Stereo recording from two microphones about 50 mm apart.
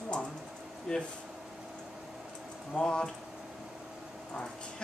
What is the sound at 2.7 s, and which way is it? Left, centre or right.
Speech, left.